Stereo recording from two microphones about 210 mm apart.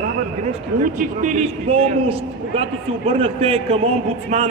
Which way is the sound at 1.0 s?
35° right (ahead or behind).